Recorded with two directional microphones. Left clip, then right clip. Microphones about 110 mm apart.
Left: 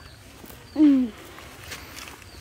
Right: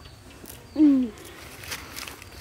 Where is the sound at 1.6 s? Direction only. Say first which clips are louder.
Right 4 dB; 30° right (ahead or behind).